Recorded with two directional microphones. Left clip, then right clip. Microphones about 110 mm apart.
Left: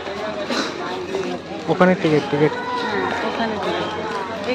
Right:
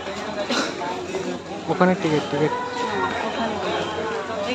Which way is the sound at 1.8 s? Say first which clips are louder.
Left 3 dB; 15° left (ahead or behind).